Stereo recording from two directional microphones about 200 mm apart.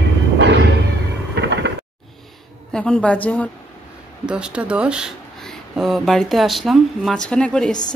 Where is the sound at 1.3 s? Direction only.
60° right (ahead or behind).